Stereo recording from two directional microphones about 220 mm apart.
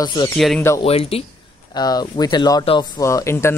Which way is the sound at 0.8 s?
25° left (ahead or behind).